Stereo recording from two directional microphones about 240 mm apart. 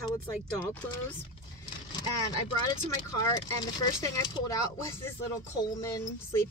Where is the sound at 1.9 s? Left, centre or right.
Centre.